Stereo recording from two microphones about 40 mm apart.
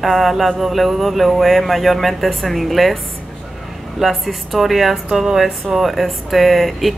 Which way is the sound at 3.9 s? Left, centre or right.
Centre.